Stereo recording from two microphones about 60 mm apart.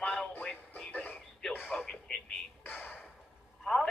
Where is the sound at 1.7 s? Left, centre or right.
Centre.